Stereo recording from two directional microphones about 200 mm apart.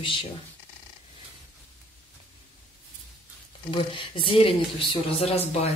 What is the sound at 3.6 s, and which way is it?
Speech, 25° left (ahead or behind).